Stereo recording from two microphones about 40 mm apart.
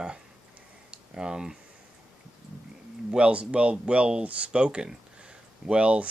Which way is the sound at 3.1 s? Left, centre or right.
Right.